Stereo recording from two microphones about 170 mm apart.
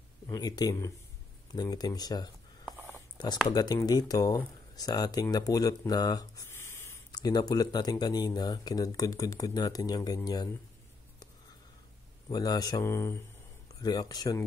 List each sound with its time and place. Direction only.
0.3 s speech: 25° left (ahead or behind)
2.9 s a sound: 25° left (ahead or behind)
3.5 s speech: 25° left (ahead or behind)
12.3 s speech: 20° left (ahead or behind)